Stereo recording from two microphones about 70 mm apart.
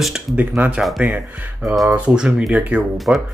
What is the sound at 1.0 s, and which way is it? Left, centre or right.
Speech, centre.